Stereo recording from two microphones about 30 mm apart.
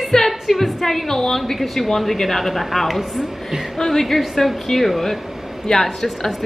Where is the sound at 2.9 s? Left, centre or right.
Centre.